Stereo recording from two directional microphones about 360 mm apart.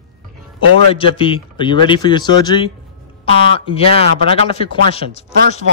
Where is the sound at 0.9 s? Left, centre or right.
Centre.